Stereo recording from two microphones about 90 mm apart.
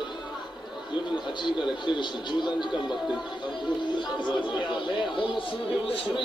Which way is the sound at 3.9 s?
60° left (ahead or behind).